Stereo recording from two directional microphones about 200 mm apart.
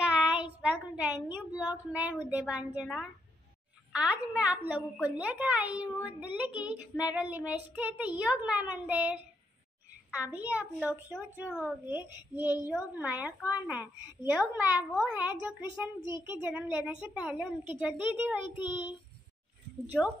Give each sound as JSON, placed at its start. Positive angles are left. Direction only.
{"t": 0.0, "sound": "child singing", "side_deg": -5}
{"t": 1.3, "sound": "a woman's voice", "side_deg": -5}
{"t": 10.3, "sound": "a woman's voice", "side_deg": -10}
{"t": 12.5, "sound": "a woman's voice", "side_deg": 15}
{"t": 12.9, "sound": "a woman's voice", "side_deg": -10}